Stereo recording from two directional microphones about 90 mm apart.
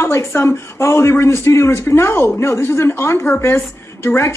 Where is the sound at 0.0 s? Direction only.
30° left (ahead or behind).